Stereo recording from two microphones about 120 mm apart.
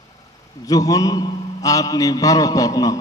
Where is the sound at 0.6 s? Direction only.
30° left (ahead or behind).